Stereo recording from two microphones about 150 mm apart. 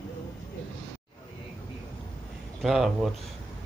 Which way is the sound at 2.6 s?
Centre (ahead or behind).